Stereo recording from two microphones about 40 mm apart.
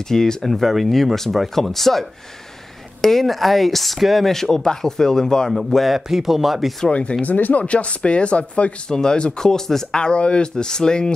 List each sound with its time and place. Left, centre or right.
0.1 s speech: centre
5.5 s speech: centre
5.9 s speech: centre
6.9 s speech: left
7.3 s speech: left
7.6 s speech: left
8.8 s speech: centre
9.9 s speech: left